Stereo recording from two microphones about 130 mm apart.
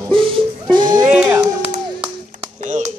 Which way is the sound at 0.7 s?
35° right (ahead or behind).